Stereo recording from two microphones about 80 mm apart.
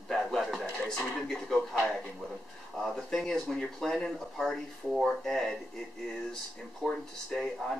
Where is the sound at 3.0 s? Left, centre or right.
Centre.